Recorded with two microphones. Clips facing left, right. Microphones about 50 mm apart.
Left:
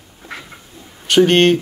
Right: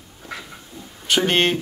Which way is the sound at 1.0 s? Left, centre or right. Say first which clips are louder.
Left 7 dB; centre.